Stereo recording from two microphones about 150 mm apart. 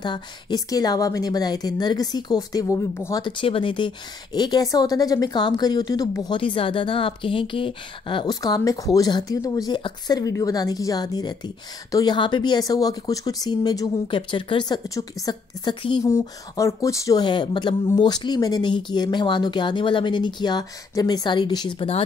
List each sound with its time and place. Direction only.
0.0 s a woman's voice: 30° left (ahead or behind)
3.2 s a woman's voice: 35° left (ahead or behind)